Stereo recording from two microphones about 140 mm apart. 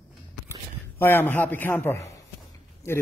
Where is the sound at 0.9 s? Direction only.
15° left (ahead or behind).